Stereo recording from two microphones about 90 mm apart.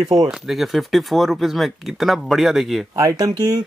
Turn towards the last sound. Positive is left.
turn(degrees=-45)  # may be behind; listen again after turning